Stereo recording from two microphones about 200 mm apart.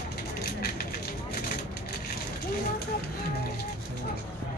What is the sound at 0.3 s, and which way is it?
Vehicle, 50° left (ahead or behind).